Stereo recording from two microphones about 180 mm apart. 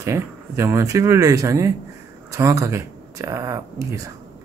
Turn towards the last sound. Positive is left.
turn(degrees=-20)  # may be behind; listen again after turning